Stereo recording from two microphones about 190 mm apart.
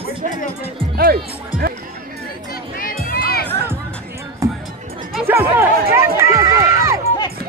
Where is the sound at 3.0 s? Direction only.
55° left (ahead or behind).